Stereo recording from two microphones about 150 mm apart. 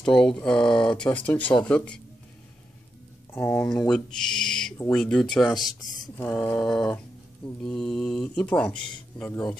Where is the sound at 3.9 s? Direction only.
5° left (ahead or behind).